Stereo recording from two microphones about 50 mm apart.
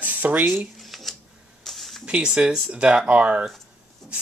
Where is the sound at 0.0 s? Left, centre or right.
Right.